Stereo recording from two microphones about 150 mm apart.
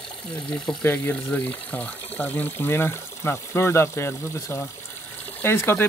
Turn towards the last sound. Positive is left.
turn(degrees=15)  # may be behind; listen again after turning